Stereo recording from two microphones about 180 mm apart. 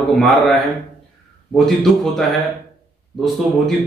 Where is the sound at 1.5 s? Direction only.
Centre (ahead or behind).